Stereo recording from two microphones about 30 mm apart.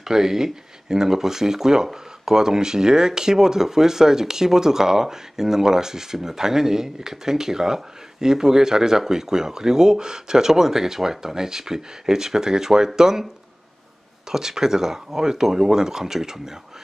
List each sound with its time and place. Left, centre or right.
0.0 s speech: centre
14.3 s speech: centre